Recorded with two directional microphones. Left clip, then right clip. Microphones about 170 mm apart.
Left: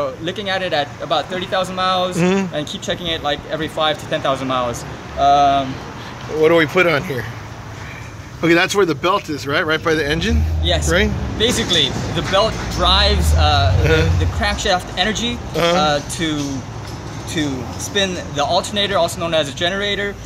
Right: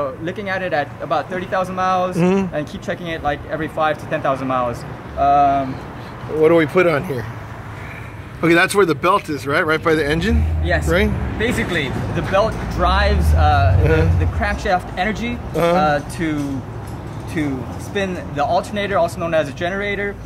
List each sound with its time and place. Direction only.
0.0 s speech: 10° left (ahead or behind)
2.9 s speech: 10° left (ahead or behind)
6.4 s speech: 10° right (ahead or behind)
8.4 s speech: centre (ahead or behind)
11.3 s speech: 30° left (ahead or behind)
12.2 s speech: 5° left (ahead or behind)
15.5 s speech: 10° right (ahead or behind)
15.8 s speech: 10° left (ahead or behind)
17.9 s speech: 15° left (ahead or behind)